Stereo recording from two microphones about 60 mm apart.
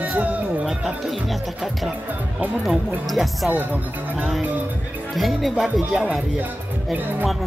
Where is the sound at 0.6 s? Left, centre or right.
Centre.